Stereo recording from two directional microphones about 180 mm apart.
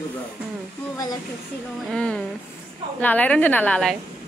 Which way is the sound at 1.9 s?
5° left (ahead or behind).